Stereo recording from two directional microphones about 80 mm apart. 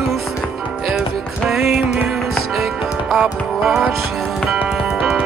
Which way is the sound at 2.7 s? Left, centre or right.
Centre.